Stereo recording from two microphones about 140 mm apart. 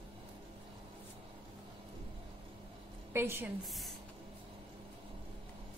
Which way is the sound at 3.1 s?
15° right (ahead or behind).